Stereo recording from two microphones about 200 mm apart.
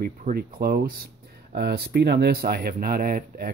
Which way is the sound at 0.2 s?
50° right (ahead or behind).